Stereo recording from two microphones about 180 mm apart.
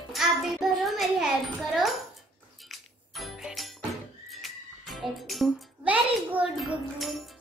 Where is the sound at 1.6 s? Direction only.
Centre (ahead or behind).